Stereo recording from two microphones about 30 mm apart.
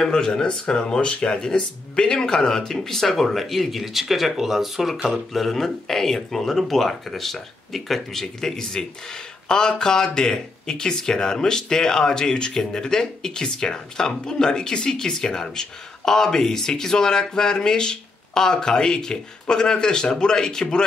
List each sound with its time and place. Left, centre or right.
0.0 s speech: left; by 4.9 s centre
5.1 s speech: centre
8.5 s speech: left